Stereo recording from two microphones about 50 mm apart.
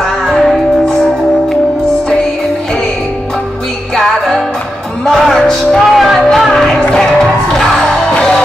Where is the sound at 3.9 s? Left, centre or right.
Centre.